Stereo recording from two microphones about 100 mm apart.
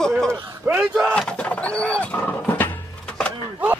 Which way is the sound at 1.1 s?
10° left (ahead or behind).